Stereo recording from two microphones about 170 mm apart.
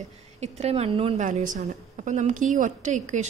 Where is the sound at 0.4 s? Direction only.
40° right (ahead or behind).